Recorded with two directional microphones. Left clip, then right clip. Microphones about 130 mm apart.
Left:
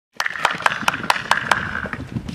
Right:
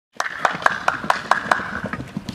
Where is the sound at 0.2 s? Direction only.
20° left (ahead or behind).